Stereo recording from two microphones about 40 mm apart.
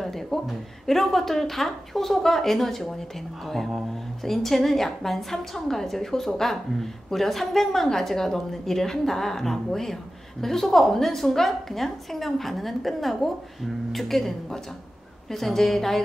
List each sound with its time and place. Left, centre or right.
0.0 s a woman's voice: centre